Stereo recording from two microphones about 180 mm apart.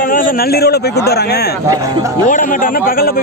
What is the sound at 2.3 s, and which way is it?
Speech, 50° left (ahead or behind).